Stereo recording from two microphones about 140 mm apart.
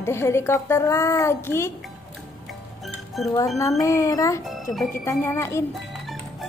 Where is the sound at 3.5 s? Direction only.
20° left (ahead or behind).